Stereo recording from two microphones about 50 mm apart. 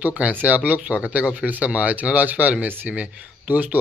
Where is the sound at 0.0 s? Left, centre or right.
Right.